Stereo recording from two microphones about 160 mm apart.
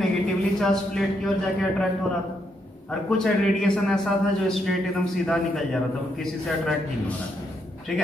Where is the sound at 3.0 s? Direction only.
5° left (ahead or behind).